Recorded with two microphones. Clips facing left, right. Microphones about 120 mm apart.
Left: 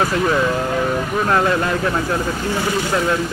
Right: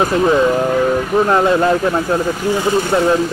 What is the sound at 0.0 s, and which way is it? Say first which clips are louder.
Speech: right 5 dB; 20° right (ahead or behind).